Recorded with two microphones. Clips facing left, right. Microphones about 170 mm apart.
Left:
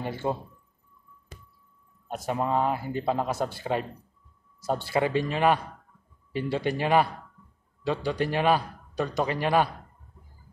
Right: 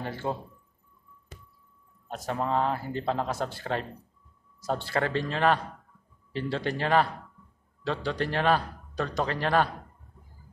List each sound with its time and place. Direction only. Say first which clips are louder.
0.0 s a man's voice: left 2 dB; 15° left (ahead or behind)
2.0 s a man's voice: left 2 dB; 10° left (ahead or behind)